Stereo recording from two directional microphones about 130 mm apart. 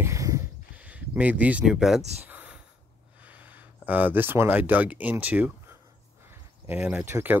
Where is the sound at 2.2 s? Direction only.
10° right (ahead or behind).